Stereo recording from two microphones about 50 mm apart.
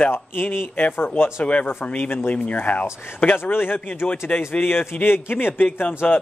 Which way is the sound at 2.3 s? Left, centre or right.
Left.